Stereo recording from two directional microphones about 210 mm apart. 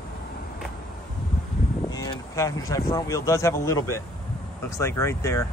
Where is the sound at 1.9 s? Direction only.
20° left (ahead or behind).